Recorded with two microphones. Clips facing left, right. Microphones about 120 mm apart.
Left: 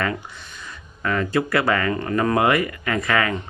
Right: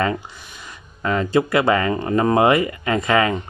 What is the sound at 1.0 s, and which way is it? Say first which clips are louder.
Speech: right 3 dB; 20° right (ahead or behind).